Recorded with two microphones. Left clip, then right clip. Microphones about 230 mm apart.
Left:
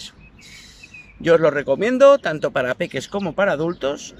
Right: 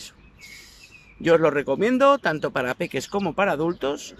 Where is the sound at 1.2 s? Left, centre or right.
Centre.